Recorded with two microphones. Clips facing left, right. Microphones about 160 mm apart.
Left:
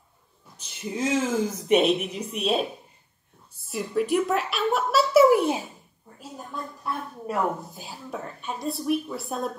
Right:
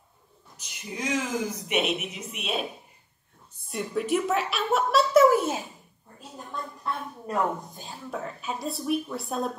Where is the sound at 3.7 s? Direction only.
Centre (ahead or behind).